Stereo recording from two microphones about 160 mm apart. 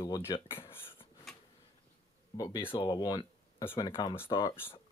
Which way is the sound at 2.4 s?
20° left (ahead or behind).